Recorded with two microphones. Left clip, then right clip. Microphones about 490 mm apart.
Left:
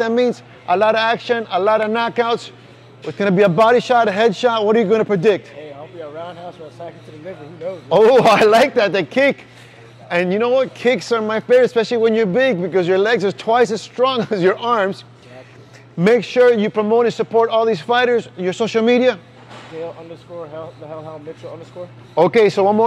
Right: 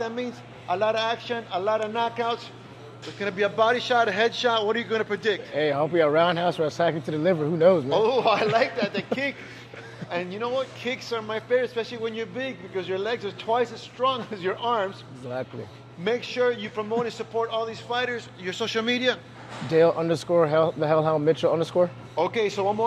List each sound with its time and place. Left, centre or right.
0.0 s speech: left
3.2 s a man's voice: left
5.9 s a man's voice: right
7.9 s speech: left
10.0 s speech: left
16.0 s speech: left
18.4 s a man's voice: left
19.8 s speech: right
22.1 s speech: left